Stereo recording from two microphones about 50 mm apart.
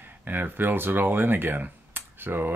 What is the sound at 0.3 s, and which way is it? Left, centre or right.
Speech, right.